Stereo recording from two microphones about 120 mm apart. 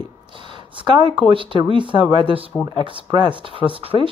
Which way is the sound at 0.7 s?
40° right (ahead or behind).